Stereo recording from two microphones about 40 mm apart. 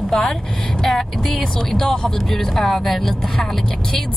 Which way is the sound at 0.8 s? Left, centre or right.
Centre.